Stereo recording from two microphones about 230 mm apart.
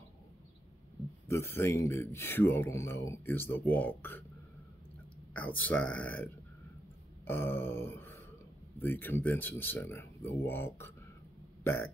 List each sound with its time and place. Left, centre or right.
1.3 s speech: centre
5.3 s speech: centre
11.6 s burping: centre